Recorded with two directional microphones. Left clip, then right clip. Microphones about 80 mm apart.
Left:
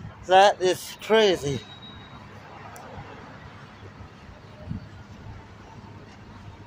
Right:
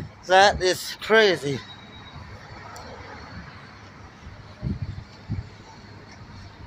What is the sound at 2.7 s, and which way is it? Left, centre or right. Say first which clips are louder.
Vehicle: right 2 dB; centre.